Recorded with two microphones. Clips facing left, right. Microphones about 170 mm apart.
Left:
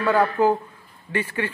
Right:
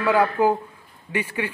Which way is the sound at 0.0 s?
10° right (ahead or behind).